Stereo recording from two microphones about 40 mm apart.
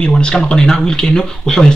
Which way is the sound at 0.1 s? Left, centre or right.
Left.